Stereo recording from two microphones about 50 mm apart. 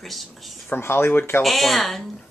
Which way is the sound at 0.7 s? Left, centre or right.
Left.